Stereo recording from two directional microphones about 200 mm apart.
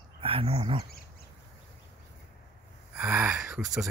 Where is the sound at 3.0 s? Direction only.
5° right (ahead or behind).